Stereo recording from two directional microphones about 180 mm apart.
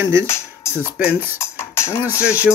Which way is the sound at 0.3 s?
15° left (ahead or behind).